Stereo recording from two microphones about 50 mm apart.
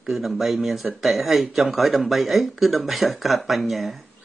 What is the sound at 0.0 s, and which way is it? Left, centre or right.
Speech, centre.